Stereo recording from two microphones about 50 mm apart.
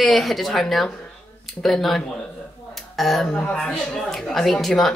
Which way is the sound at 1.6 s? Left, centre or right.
Centre.